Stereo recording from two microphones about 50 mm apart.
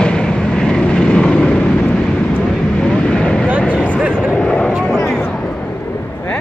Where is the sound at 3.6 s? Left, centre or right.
Left.